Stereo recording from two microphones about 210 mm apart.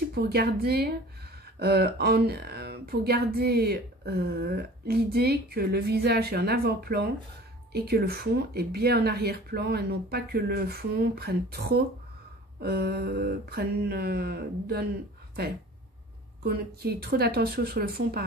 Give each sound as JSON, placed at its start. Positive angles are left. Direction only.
{"t": 0.1, "sound": "speech", "side_deg": -50}
{"t": 16.4, "sound": "speech", "side_deg": -50}